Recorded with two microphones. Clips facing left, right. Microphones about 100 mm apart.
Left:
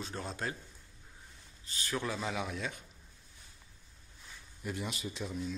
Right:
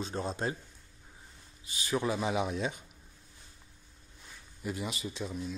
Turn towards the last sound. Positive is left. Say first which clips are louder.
# right 1 dB
turn(degrees=-5)  # may be behind; listen again after turning